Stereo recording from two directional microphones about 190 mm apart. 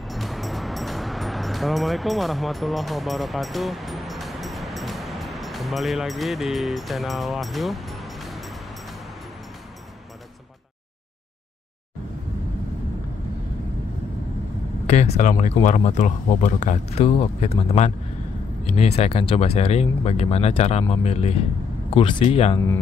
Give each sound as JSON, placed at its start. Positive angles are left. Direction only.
{"t": 0.1, "sound": "music", "side_deg": 0}
{"t": 14.9, "sound": "speech", "side_deg": 35}